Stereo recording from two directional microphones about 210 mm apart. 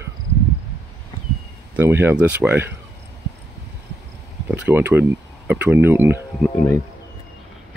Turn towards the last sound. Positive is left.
turn(degrees=10)  # may be behind; listen again after turning